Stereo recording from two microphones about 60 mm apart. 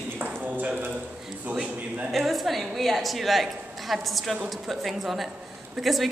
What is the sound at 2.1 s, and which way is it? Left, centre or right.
A woman's voice, centre.